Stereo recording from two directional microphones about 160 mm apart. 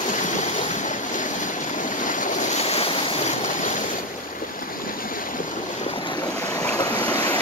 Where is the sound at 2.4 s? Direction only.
40° left (ahead or behind).